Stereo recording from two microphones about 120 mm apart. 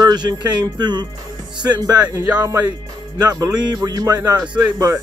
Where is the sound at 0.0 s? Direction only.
35° right (ahead or behind).